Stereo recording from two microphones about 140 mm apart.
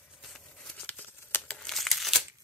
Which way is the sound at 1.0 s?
15° left (ahead or behind).